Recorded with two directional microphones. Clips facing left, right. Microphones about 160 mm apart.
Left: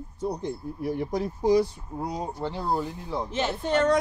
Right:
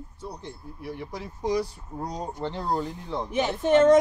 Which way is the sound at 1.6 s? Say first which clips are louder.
Left 2 dB; 10° left (ahead or behind).